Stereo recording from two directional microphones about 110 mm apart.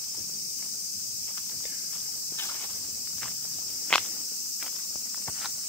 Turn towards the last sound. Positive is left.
turn(degrees=10)  # may be behind; listen again after turning